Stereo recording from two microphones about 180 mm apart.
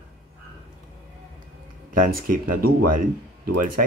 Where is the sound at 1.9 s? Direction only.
55° right (ahead or behind).